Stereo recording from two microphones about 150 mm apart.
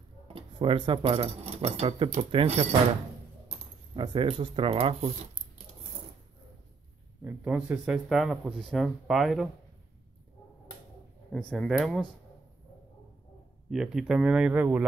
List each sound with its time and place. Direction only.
0.3 s speech: 35° right (ahead or behind)
4.0 s speech: 35° right (ahead or behind)
7.2 s speech: 10° right (ahead or behind)
11.3 s speech: 5° left (ahead or behind)
13.7 s speech: 5° right (ahead or behind)